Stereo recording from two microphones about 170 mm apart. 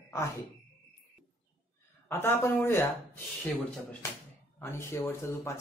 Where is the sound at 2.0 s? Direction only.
15° left (ahead or behind).